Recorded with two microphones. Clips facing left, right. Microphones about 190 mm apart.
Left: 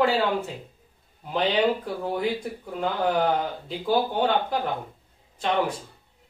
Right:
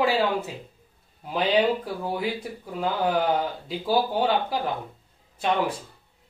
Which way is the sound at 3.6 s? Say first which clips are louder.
Left 1 dB; 10° right (ahead or behind).